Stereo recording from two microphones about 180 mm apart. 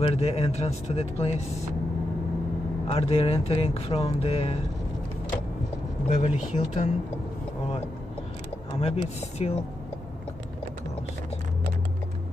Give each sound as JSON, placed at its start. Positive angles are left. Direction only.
{"t": 0.0, "sound": "speech", "side_deg": 35}
{"t": 2.9, "sound": "speech", "side_deg": 30}
{"t": 6.0, "sound": "speech", "side_deg": 40}
{"t": 8.8, "sound": "speech", "side_deg": 35}